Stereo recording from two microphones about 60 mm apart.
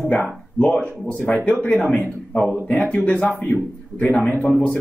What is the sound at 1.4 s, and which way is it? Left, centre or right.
Speech, left.